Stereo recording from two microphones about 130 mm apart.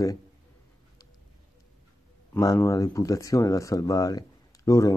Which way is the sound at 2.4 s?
25° left (ahead or behind).